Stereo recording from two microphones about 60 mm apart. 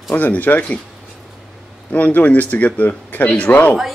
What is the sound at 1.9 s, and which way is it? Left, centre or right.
Speech, left.